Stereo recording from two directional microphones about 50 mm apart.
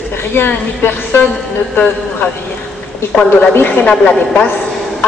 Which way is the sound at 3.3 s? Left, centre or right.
Left.